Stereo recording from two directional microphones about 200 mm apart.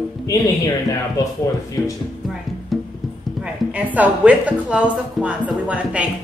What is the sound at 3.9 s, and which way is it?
Speech, 5° right (ahead or behind).